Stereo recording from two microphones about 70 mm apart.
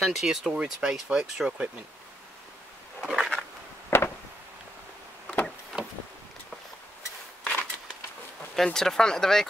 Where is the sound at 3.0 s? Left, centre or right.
Centre.